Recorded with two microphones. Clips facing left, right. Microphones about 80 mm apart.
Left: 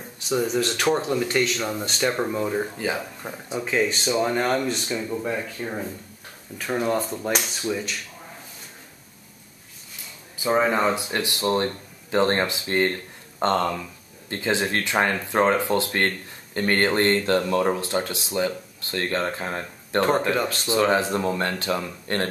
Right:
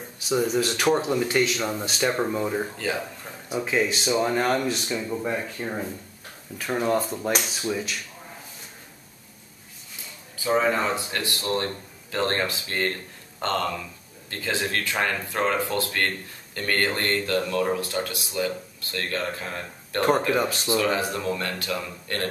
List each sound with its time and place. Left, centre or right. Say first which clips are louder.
0.2 s speech: even; centre
10.4 s speech: left 2 dB; centre
20.3 s speech: right 1 dB; centre
20.7 s speech: left 5 dB; left